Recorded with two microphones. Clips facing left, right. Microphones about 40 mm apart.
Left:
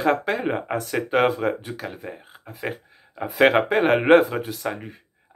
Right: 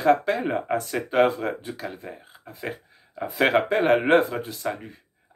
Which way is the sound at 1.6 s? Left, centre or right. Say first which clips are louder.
Left 1 dB; centre.